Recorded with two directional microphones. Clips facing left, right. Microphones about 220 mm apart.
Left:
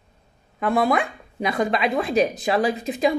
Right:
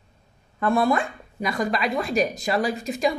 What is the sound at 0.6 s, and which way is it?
A woman's voice, 15° left (ahead or behind).